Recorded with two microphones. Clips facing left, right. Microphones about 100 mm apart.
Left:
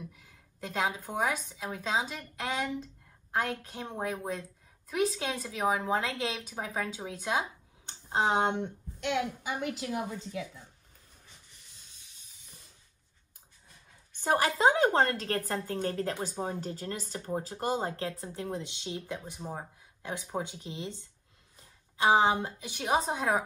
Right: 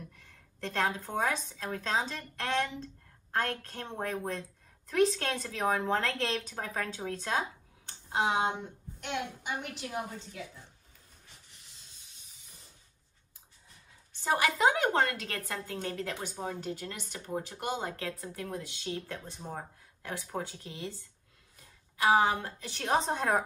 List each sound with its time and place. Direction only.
0.1 s a woman's voice: 5° left (ahead or behind)
7.8 s a sound: 35° left (ahead or behind)
8.4 s speech: 65° left (ahead or behind); by 9.2 s 85° left
14.2 s speech: 45° left (ahead or behind)
14.6 s a woman's voice: 35° left (ahead or behind); by 23.4 s 5° left (ahead or behind)